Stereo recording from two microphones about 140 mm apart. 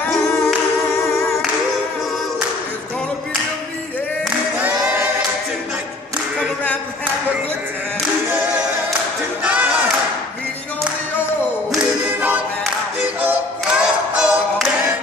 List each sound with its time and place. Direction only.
9.4 s a sound: 10° right (ahead or behind)
11.7 s a capella: 10° right (ahead or behind)
13.2 s music: 10° right (ahead or behind)